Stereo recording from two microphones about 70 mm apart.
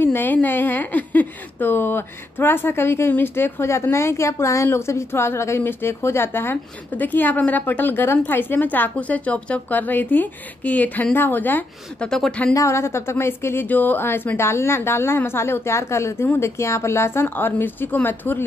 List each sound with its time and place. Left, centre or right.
0.0 s a woman's voice: left
12.0 s speech: centre
12.5 s a woman's voice: left
13.7 s a woman's voice: left